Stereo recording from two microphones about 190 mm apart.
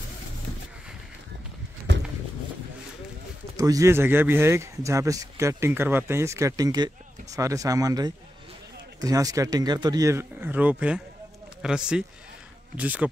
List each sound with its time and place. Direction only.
3.5 s speech: 15° right (ahead or behind)